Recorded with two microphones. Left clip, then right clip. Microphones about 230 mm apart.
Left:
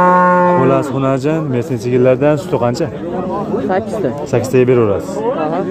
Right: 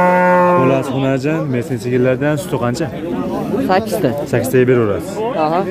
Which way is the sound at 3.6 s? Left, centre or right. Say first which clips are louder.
Right 3 dB; right.